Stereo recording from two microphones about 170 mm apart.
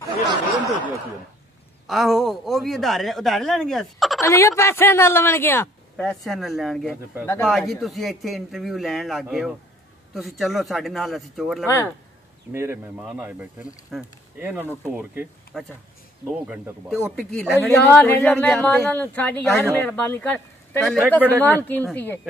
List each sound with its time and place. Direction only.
1.9 s speech: centre (ahead or behind)
4.2 s speech: 15° left (ahead or behind); by 11.6 s centre (ahead or behind)
11.6 s speech: 15° left (ahead or behind)
12.5 s speech: 15° right (ahead or behind)
14.4 s speech: 10° right (ahead or behind)
15.5 s speech: centre (ahead or behind)
16.3 s speech: 10° right (ahead or behind)
17.1 s speech: 5° left (ahead or behind)